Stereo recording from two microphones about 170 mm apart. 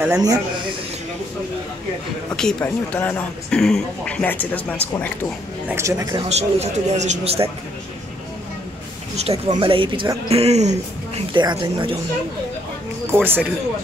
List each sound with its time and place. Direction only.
0.0 s speech: 20° right (ahead or behind)
2.3 s speech: 5° left (ahead or behind)
5.7 s speech: 15° right (ahead or behind)
6.2 s speech: 40° right (ahead or behind)
9.1 s speech: 40° right (ahead or behind)
11.3 s speech: 25° right (ahead or behind)
13.1 s speech: 10° right (ahead or behind)